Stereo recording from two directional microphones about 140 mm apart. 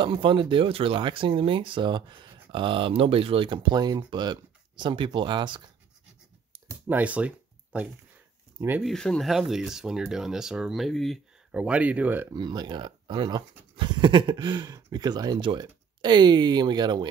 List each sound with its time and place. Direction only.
0.0 s speech: 35° right (ahead or behind)
6.7 s a sound: 10° right (ahead or behind)
8.5 s speech: 15° right (ahead or behind)
8.8 s speech: 5° left (ahead or behind); by 12.4 s 15° right (ahead or behind)
12.4 s speech: 30° right (ahead or behind)